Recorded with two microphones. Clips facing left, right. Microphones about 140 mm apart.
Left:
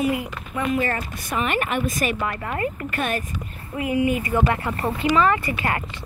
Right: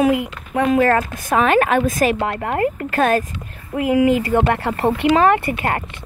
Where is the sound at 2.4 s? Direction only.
65° right (ahead or behind).